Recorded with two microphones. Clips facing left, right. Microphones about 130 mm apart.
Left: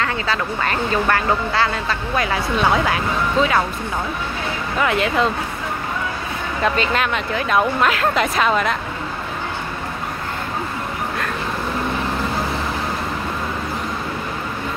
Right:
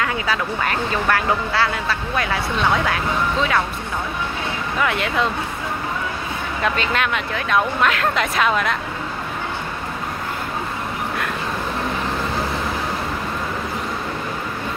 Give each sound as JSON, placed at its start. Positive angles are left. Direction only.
{"t": 0.0, "sound": "speech", "side_deg": -10}
{"t": 4.7, "sound": "speech", "side_deg": 0}
{"t": 6.6, "sound": "speech", "side_deg": 0}